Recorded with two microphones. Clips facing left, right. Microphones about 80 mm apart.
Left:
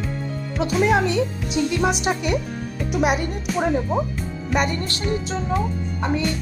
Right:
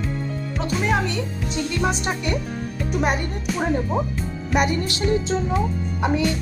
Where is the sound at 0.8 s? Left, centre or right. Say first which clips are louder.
Left 5 dB; centre.